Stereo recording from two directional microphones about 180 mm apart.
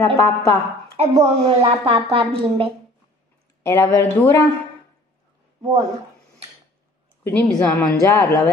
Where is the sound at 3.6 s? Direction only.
15° left (ahead or behind).